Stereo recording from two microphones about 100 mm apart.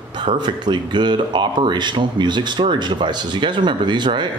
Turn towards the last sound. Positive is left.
turn(degrees=-50)  # may be behind; listen again after turning